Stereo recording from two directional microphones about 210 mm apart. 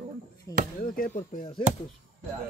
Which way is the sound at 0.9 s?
40° left (ahead or behind).